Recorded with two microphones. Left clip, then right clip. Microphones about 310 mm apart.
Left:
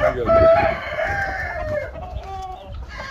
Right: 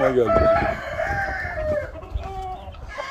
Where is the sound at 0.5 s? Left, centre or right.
Centre.